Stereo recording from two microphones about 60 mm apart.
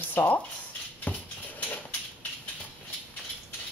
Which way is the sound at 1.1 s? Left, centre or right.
Left.